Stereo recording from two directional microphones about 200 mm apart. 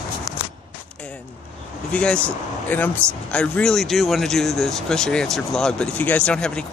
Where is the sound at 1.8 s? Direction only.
5° left (ahead or behind).